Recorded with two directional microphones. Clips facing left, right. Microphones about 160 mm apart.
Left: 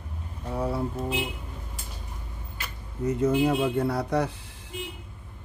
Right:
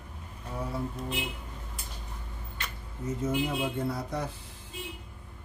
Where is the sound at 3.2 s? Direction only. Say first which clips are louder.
Left 7 dB; 70° left (ahead or behind).